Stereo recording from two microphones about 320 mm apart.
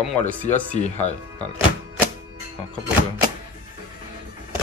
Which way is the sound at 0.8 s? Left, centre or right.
Left.